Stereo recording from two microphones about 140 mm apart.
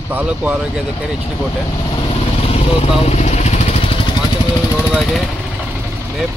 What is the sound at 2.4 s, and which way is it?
Vehicle, 45° left (ahead or behind).